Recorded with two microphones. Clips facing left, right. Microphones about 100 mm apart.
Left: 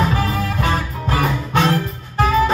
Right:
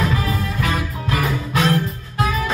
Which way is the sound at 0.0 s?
30° left (ahead or behind).